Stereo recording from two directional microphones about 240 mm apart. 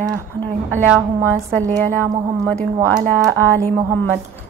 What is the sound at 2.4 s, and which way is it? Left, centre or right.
Speech, centre.